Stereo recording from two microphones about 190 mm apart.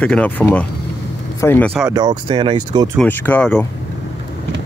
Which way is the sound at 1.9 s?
25° right (ahead or behind).